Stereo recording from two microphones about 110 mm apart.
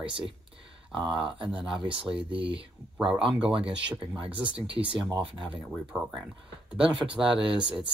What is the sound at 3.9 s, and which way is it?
Speech, 50° right (ahead or behind).